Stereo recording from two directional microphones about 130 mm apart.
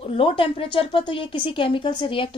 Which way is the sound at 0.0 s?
45° left (ahead or behind).